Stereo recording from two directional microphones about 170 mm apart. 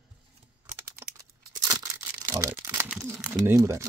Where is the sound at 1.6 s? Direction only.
20° right (ahead or behind).